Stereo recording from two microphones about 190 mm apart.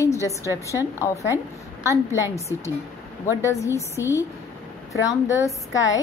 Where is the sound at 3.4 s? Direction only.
15° left (ahead or behind).